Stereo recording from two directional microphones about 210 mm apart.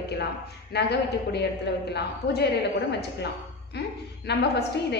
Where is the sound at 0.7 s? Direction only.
50° left (ahead or behind).